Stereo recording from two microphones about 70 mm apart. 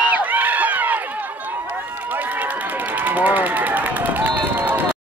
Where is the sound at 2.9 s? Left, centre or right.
Right.